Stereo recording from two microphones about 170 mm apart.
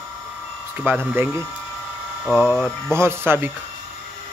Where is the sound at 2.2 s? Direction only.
Centre (ahead or behind).